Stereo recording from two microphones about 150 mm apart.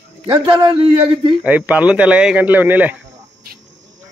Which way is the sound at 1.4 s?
10° right (ahead or behind).